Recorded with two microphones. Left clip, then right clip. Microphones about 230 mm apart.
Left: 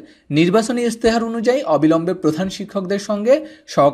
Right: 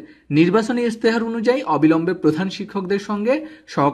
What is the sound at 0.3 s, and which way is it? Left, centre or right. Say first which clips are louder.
A man's voice: left 1 dB; centre.